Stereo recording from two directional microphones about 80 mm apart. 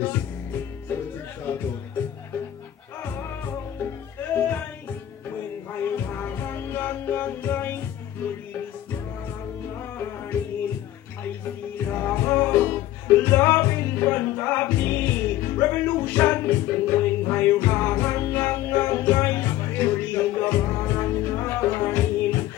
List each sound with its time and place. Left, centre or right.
0.0 s music: left
3.0 s music: left
4.3 s music: left
5.7 s music: left
9.9 s music: left
11.8 s music: left